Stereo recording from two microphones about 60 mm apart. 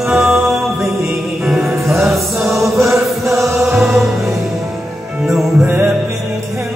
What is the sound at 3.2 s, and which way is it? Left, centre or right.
Music, right.